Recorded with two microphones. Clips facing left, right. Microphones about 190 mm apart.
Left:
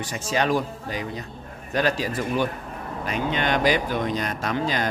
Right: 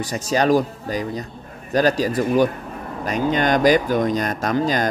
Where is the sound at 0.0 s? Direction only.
40° right (ahead or behind).